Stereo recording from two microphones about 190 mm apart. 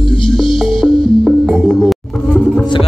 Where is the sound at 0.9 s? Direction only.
25° left (ahead or behind).